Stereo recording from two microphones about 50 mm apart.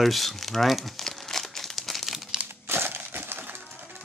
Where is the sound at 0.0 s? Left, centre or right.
Centre.